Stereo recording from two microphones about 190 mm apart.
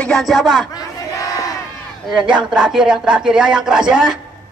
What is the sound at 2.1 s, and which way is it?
Music, 5° right (ahead or behind).